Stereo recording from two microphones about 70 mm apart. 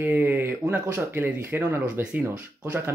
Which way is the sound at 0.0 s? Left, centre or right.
Right.